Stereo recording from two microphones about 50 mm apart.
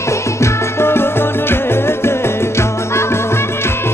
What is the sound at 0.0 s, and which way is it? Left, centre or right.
Music, left.